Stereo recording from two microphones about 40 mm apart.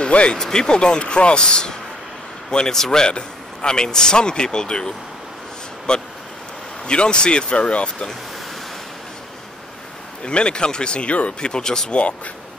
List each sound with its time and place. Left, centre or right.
0.1 s a man's voice: left
0.4 s a man's voice: centre
10.2 s a man's voice: left
11.5 s speech: centre
11.9 s a man's voice: left